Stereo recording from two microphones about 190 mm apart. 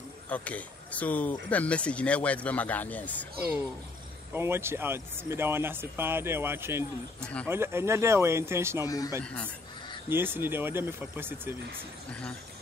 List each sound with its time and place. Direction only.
0.3 s speech: 5° left (ahead or behind)
3.3 s speech: 10° right (ahead or behind)
8.8 s speech: 20° left (ahead or behind)
9.2 s speech: 5° left (ahead or behind)
10.0 s speech: 10° right (ahead or behind)
12.1 s speech: 5° left (ahead or behind)